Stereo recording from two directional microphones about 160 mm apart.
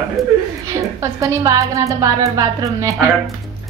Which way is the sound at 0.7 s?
20° right (ahead or behind).